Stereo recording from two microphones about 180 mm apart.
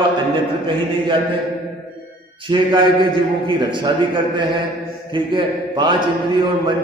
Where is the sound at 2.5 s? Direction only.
25° right (ahead or behind).